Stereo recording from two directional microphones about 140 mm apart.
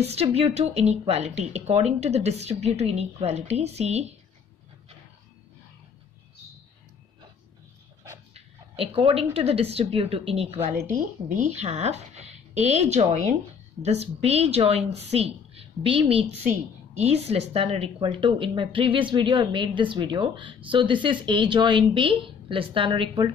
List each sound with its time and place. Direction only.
0.0 s speech: 50° right (ahead or behind)
8.4 s speech: 45° right (ahead or behind)
10.7 s a woman's voice: 60° right (ahead or behind); by 23.3 s 35° right (ahead or behind)